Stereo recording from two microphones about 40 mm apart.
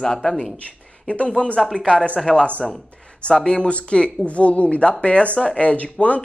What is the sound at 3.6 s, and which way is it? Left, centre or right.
Speech, left.